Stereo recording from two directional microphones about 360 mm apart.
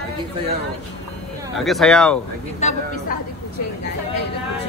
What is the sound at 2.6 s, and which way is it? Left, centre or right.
Speech, centre.